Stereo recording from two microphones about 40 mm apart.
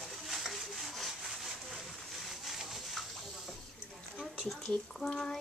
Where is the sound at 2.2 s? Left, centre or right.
Centre.